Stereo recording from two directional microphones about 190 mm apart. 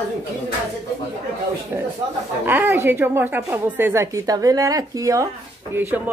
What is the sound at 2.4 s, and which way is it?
Speech, 10° right (ahead or behind).